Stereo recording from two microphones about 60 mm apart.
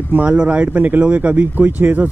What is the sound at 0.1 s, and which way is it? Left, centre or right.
Speech, right.